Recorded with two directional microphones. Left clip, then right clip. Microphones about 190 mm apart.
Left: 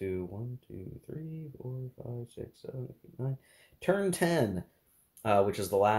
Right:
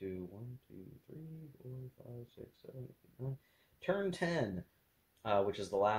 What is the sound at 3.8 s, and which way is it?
Speech, 15° left (ahead or behind).